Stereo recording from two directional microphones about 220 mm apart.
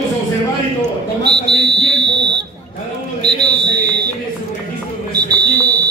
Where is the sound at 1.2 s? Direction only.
50° right (ahead or behind).